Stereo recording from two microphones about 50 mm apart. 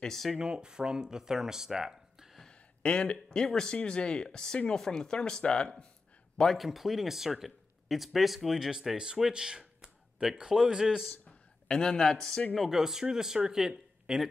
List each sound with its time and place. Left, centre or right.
0.0 s speech: centre
0.4 s speech: centre
2.8 s a man's voice: left
3.4 s speech: centre
6.5 s speech: centre
11.2 s speech: left
12.5 s speech: centre